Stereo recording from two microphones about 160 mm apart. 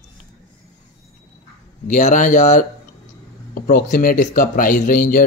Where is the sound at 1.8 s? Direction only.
50° left (ahead or behind).